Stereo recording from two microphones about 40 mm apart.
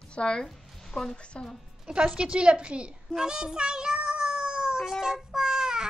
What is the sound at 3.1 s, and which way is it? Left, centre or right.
Child singing, centre.